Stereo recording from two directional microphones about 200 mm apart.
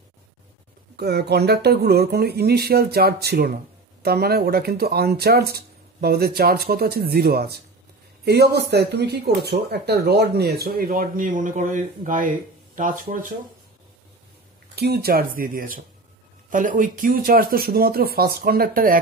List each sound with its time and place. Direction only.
0.9 s speech: 55° right (ahead or behind)
14.8 s speech: 50° right (ahead or behind)